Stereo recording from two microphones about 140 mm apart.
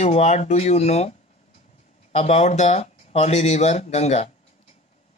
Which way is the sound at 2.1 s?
50° left (ahead or behind).